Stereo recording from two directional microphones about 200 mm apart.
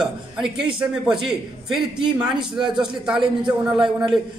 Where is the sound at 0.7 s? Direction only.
5° right (ahead or behind).